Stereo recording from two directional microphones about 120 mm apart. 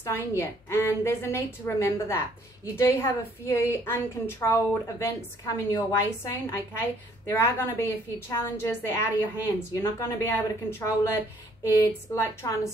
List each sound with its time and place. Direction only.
0.0 s a woman's voice: 20° left (ahead or behind)